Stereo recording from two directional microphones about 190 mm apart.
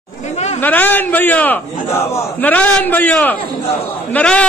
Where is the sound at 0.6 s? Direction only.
10° left (ahead or behind).